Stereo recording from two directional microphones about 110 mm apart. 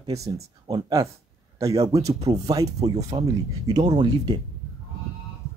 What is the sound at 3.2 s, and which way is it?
Speech, 70° right (ahead or behind).